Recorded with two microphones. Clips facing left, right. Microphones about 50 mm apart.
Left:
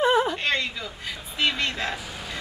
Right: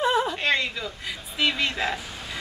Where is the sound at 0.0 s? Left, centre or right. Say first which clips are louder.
Left 2 dB; centre.